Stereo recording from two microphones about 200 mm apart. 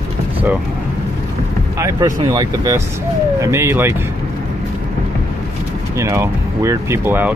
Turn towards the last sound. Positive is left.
turn(degrees=-10)  # may be behind; listen again after turning